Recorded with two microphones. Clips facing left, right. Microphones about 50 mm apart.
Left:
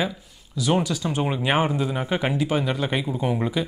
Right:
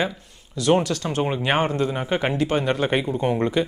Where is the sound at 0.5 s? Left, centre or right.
Centre.